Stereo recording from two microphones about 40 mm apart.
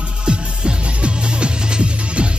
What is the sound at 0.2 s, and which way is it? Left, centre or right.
Music, right.